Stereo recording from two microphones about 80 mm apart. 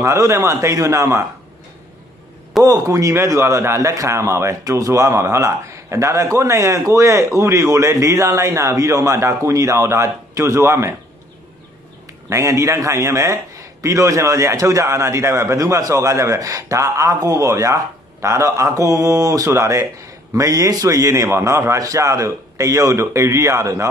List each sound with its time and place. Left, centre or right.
0.0 s a man's voice: right
2.6 s a man's voice: right
12.3 s a man's voice: right